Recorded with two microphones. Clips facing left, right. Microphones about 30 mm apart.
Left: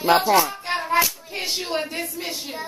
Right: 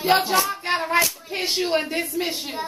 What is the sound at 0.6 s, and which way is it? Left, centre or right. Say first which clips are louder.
Hands: right 1 dB; centre.